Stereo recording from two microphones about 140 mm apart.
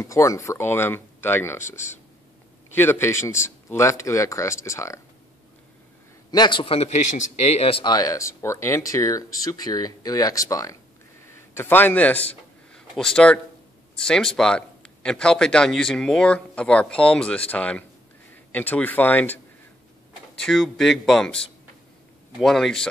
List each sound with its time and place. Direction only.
0.0 s a man's voice: 20° left (ahead or behind)
6.3 s a man's voice: 30° left (ahead or behind)
11.2 s a sound: 15° left (ahead or behind)
13.9 s a man's voice: 5° left (ahead or behind)